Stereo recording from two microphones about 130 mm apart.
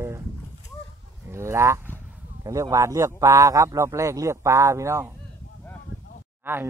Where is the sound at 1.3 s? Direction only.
20° right (ahead or behind).